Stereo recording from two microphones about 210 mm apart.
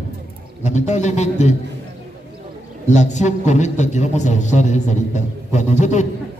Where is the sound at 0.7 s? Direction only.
35° left (ahead or behind).